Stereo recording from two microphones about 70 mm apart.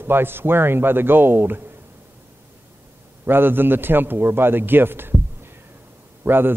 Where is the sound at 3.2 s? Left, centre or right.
Right.